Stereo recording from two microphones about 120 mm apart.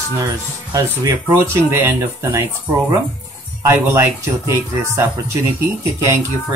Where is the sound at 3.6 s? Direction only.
25° right (ahead or behind).